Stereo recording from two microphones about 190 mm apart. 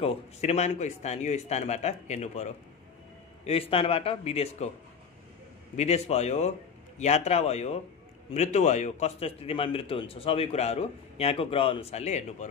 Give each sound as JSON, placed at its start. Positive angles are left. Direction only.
{"t": 0.0, "sound": "a man's voice", "side_deg": 30}
{"t": 5.8, "sound": "a man's voice", "side_deg": 35}